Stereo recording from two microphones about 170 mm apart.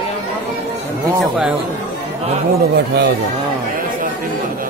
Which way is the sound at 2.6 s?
70° right (ahead or behind).